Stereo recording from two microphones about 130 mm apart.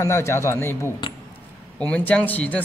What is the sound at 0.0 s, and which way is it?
A man's voice, 20° left (ahead or behind).